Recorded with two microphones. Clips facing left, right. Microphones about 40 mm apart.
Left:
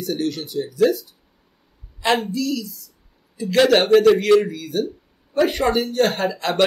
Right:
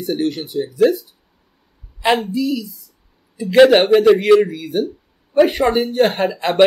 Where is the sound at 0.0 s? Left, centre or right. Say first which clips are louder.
Right 4 dB; right.